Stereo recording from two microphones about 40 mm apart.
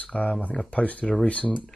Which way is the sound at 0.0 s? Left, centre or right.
Left.